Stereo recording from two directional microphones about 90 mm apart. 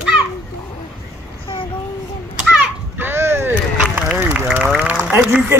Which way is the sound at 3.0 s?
25° right (ahead or behind).